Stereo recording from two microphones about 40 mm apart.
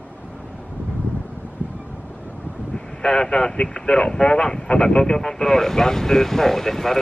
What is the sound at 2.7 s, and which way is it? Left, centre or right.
Speech, centre.